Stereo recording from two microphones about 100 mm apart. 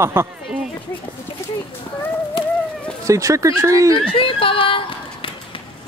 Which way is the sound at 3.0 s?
30° right (ahead or behind).